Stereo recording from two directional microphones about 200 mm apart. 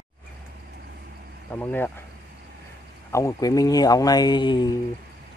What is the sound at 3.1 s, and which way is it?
Speech, 15° left (ahead or behind).